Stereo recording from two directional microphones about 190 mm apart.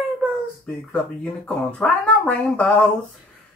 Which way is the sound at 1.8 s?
5° left (ahead or behind).